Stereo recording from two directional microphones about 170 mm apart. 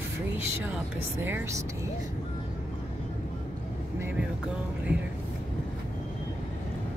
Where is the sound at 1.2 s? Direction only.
10° right (ahead or behind).